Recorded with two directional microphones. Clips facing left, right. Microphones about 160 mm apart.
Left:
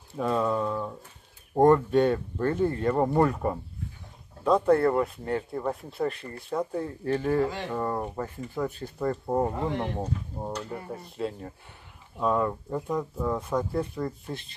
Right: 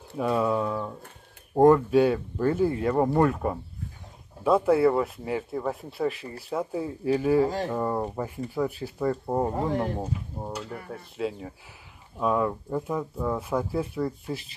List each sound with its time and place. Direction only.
0.2 s speech: 10° right (ahead or behind)
7.4 s speech: 40° right (ahead or behind)
7.7 s speech: 10° right (ahead or behind)